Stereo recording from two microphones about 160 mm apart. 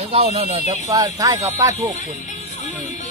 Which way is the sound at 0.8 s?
25° right (ahead or behind).